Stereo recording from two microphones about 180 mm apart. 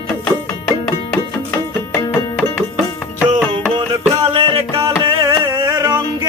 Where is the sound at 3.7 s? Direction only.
35° right (ahead or behind); by 6.3 s 20° right (ahead or behind).